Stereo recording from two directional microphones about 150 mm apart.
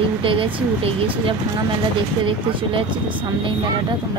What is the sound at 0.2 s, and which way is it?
Speech, 35° right (ahead or behind).